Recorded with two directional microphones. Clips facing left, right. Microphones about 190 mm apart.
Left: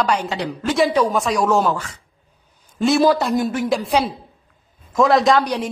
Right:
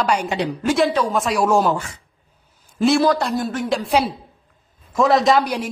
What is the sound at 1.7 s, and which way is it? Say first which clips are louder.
Speech: right 1 dB; 25° right (ahead or behind).